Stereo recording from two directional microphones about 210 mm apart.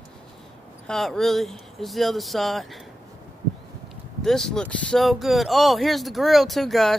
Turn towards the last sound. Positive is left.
turn(degrees=0)  # may be behind; listen again after turning